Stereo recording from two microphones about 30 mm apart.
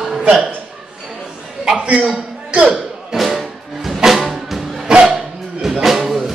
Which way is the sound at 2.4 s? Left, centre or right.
Right.